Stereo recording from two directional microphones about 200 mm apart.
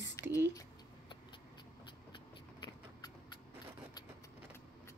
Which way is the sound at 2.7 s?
20° left (ahead or behind).